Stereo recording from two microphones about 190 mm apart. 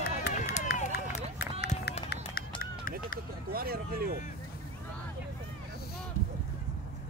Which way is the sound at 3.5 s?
50° right (ahead or behind).